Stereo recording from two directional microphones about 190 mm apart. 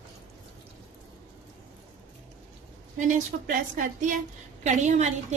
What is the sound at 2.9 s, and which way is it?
A woman's voice, 40° right (ahead or behind).